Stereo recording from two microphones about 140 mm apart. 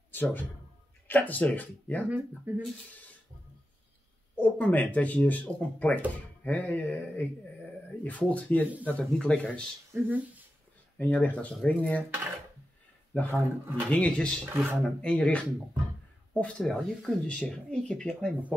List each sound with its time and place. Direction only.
0.1 s a man's voice: 15° left (ahead or behind)
2.0 s speech: 10° right (ahead or behind)
4.4 s speech: 10° left (ahead or behind)
9.9 s speech: 10° right (ahead or behind)
11.0 s speech: 10° left (ahead or behind)
13.3 s speech: 15° right (ahead or behind)
13.8 s speech: 10° left (ahead or behind)
14.5 s speech: 15° right (ahead or behind)
15.0 s speech: 10° left (ahead or behind)